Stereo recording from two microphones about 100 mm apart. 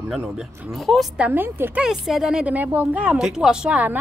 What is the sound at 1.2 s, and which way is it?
Speech, 20° right (ahead or behind).